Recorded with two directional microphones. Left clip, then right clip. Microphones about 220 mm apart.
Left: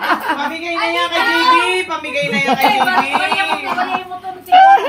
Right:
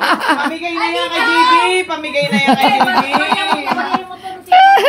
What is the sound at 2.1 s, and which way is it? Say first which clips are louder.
Speech: right 3 dB; 45° right (ahead or behind).